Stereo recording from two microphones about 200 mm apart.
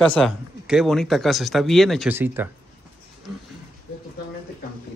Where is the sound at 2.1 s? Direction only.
10° right (ahead or behind).